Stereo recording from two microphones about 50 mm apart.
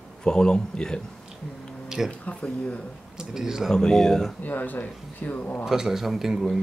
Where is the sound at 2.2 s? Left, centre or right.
Left.